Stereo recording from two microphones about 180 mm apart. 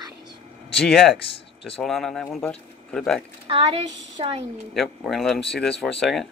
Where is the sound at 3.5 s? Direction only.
30° right (ahead or behind).